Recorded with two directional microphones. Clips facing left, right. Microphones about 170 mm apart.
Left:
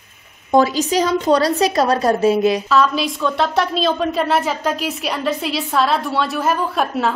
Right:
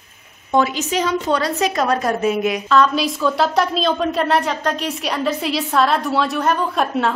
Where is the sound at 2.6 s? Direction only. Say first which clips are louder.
Right 1 dB; 5° left (ahead or behind).